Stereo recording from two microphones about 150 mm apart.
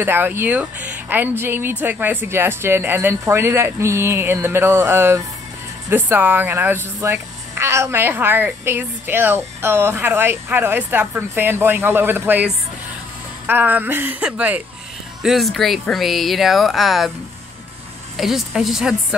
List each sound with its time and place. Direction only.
0.0 s speech: 15° right (ahead or behind)
18.1 s speech: centre (ahead or behind)